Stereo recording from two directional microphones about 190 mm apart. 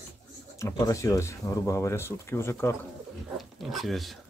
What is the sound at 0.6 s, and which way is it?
Speech, 15° left (ahead or behind).